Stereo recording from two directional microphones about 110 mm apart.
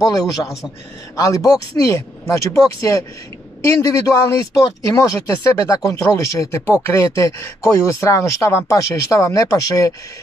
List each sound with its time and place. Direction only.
0.0 s a man's voice: 35° left (ahead or behind)